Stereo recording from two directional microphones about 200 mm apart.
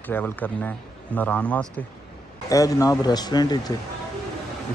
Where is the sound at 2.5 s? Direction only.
15° left (ahead or behind).